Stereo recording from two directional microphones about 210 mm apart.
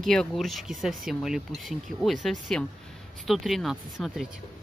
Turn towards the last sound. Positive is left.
turn(degrees=0)  # may be behind; listen again after turning